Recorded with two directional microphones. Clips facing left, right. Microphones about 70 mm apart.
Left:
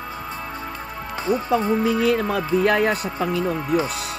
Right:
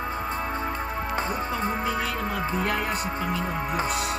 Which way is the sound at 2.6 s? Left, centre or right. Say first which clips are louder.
Left 8 dB; left.